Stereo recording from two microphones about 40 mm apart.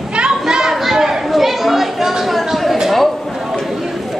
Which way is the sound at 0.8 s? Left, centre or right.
Centre.